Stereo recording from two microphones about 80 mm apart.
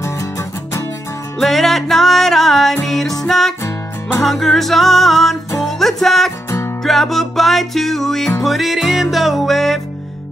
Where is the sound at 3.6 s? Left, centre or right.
Left.